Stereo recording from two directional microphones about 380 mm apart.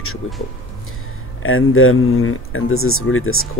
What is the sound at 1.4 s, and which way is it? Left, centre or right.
Speech, left.